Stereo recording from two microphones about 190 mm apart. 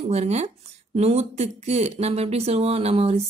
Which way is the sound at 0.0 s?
35° right (ahead or behind).